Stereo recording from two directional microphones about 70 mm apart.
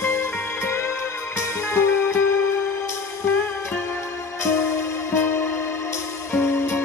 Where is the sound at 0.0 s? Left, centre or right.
Left.